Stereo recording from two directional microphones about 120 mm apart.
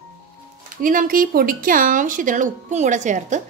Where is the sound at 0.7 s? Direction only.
90° right.